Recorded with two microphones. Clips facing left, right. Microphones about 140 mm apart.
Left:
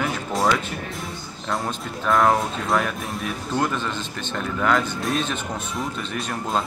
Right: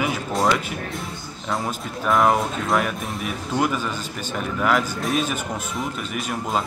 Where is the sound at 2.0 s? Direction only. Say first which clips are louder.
Even; centre (ahead or behind).